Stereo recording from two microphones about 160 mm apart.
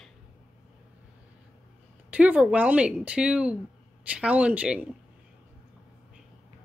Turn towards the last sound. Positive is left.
turn(degrees=-5)  # may be behind; listen again after turning